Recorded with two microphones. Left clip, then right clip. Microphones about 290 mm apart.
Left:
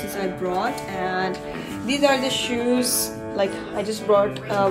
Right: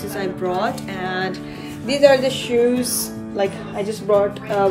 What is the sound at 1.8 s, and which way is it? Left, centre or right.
Music, centre.